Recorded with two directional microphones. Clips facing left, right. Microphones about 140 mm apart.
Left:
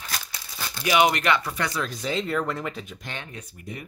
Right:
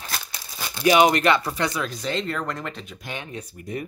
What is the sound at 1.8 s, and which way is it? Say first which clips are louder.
Speech: right 1 dB; centre (ahead or behind).